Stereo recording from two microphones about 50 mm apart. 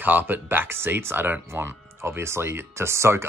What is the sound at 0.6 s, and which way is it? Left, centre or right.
Speech, right.